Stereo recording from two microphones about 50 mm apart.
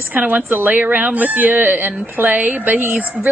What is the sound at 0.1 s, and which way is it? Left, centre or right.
Speech, right.